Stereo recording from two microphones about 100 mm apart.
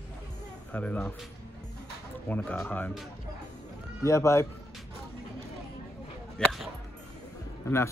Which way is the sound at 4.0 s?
30° left (ahead or behind).